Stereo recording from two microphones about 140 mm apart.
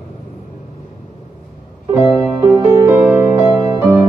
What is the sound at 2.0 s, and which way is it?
Music, 10° right (ahead or behind).